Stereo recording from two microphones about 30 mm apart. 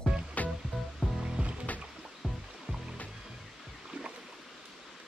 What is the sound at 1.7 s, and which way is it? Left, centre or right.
Music, left.